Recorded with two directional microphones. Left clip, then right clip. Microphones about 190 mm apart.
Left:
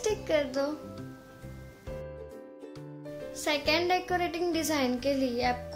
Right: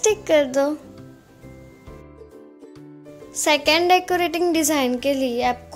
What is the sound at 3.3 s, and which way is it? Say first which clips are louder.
A woman's voice: right 10 dB; 45° right (ahead or behind).